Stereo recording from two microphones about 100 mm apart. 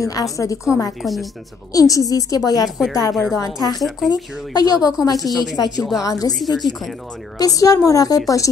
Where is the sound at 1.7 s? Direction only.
35° left (ahead or behind).